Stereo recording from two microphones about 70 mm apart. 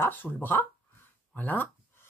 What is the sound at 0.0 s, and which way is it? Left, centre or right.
Speech, left.